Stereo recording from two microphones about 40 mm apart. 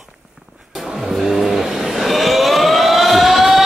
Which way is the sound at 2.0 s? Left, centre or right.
Centre.